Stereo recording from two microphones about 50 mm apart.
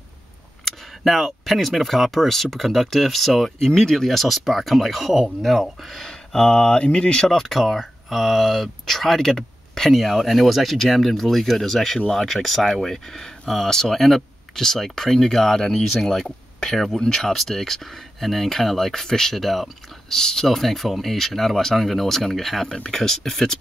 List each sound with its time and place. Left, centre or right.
0.7 s speech: centre
3.5 s speech: centre
6.0 s speech: centre
7.2 s speech: centre